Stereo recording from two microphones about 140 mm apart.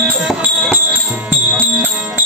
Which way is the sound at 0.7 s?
10° right (ahead or behind).